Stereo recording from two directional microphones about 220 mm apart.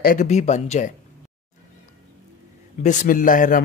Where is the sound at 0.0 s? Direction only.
35° left (ahead or behind).